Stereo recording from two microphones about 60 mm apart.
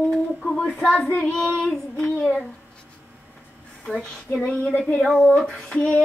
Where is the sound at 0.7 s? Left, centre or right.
Left.